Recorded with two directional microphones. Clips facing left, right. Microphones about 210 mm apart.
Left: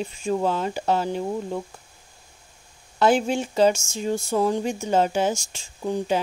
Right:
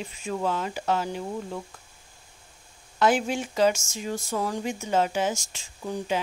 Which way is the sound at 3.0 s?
30° left (ahead or behind).